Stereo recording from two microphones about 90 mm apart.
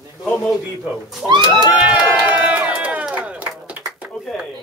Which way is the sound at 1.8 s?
15° right (ahead or behind).